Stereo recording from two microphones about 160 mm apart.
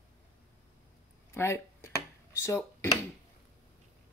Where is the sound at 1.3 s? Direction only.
15° left (ahead or behind).